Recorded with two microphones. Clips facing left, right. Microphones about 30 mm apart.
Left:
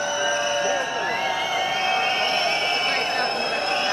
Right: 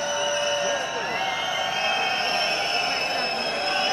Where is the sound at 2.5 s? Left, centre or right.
Left.